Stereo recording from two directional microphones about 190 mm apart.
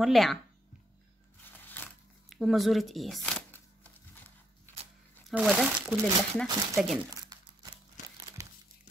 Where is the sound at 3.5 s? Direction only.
10° left (ahead or behind).